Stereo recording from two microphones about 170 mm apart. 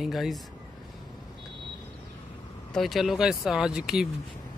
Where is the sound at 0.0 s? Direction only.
Centre (ahead or behind).